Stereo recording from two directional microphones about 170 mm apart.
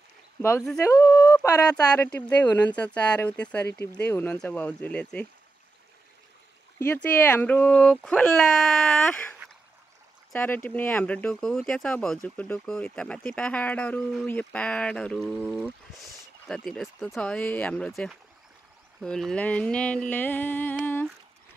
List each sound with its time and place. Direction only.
0.4 s speech: 15° left (ahead or behind)
6.8 s speech: 10° left (ahead or behind)